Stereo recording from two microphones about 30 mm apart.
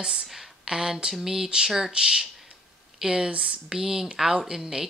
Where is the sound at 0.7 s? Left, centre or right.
Centre; by 3.6 s right.